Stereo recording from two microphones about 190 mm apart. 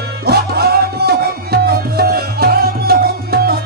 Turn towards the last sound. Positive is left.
turn(degrees=-55)  # may be behind; listen again after turning